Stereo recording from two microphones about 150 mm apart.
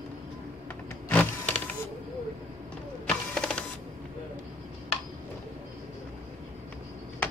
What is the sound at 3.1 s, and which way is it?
Mechanisms, 5° left (ahead or behind).